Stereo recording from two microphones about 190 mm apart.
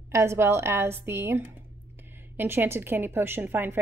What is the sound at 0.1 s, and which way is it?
A woman's voice, 15° right (ahead or behind).